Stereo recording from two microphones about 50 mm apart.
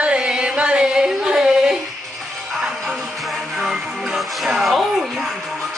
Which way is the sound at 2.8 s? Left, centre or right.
Centre.